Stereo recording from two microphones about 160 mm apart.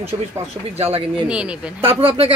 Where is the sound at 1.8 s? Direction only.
35° right (ahead or behind).